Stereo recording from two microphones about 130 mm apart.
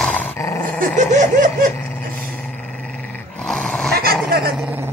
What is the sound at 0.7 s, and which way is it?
Snicker, 70° right (ahead or behind).